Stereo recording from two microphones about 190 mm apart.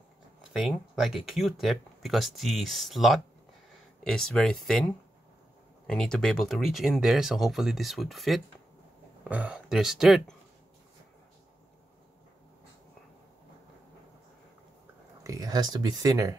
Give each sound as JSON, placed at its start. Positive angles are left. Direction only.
{"t": 0.5, "sound": "speech", "side_deg": 0}
{"t": 15.2, "sound": "speech", "side_deg": -20}